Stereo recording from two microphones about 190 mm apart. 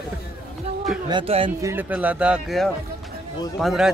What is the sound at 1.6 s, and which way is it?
Speech, 10° right (ahead or behind).